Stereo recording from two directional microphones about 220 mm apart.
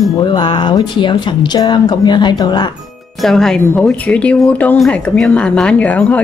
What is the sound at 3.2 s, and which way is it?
Speech, centre (ahead or behind).